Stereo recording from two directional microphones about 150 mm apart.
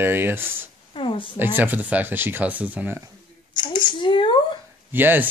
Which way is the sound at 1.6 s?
10° right (ahead or behind).